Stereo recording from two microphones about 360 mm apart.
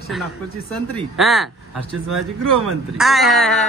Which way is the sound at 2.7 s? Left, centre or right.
Centre.